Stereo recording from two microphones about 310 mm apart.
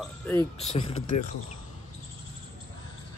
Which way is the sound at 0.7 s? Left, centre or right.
Centre.